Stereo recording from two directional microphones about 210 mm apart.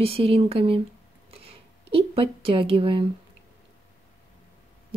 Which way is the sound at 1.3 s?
25° right (ahead or behind).